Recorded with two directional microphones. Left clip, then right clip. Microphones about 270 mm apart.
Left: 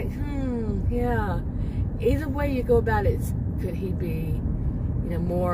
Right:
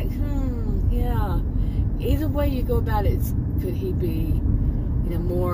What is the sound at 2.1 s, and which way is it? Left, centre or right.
Speech, left.